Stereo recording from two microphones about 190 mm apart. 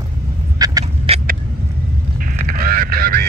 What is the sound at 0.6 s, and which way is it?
Duck, 20° right (ahead or behind).